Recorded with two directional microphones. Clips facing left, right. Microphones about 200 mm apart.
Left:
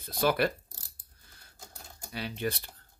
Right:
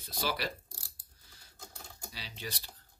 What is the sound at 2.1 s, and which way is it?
Speech, 55° left (ahead or behind).